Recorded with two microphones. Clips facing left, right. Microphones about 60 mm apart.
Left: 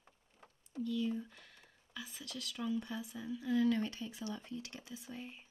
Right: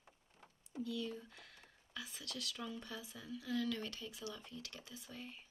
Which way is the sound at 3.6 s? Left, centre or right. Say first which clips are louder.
Left 8 dB; left.